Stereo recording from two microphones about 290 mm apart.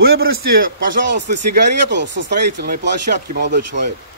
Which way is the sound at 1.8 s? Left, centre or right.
Right.